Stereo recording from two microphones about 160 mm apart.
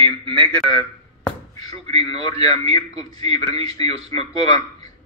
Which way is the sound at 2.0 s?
25° left (ahead or behind).